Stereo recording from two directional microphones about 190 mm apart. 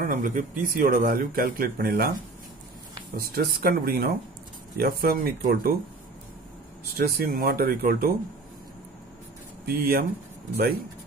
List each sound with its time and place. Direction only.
0.0 s a man's voice: 45° right (ahead or behind)
3.2 s a man's voice: 50° right (ahead or behind)
7.0 s a man's voice: 50° right (ahead or behind)
9.7 s a man's voice: 55° right (ahead or behind)